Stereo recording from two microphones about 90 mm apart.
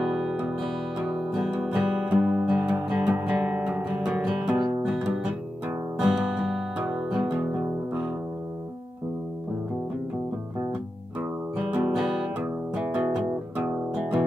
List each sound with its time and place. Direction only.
0.0 s music: 10° right (ahead or behind)
11.1 s music: 15° right (ahead or behind)
12.4 s guitar: 15° right (ahead or behind)
13.7 s music: 10° right (ahead or behind)